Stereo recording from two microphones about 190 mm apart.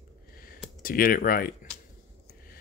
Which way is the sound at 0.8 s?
50° left (ahead or behind).